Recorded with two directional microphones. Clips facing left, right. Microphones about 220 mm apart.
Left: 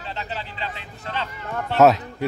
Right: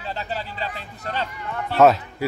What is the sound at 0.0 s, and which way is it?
Speech, 40° right (ahead or behind).